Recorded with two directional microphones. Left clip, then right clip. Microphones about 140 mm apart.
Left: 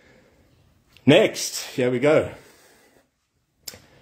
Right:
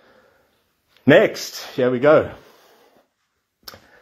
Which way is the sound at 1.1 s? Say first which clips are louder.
Right 3 dB; centre (ahead or behind).